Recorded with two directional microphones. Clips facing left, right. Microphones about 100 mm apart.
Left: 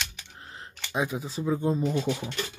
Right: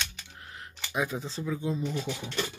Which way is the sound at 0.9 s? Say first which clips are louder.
Left 2 dB; 15° left (ahead or behind).